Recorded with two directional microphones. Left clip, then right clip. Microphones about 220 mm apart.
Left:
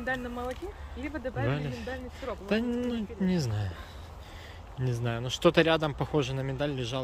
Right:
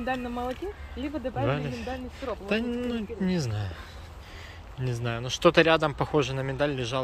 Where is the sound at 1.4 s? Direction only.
10° left (ahead or behind).